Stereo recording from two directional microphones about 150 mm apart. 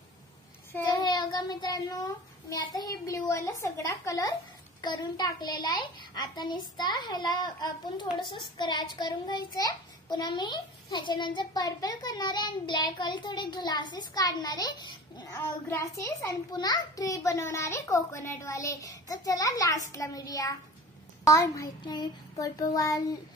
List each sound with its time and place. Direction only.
0.7 s a child's voice: 25° left (ahead or behind)
15.3 s a child's voice: 15° left (ahead or behind)